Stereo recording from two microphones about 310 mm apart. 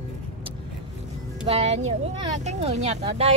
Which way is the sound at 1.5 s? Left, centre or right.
Right.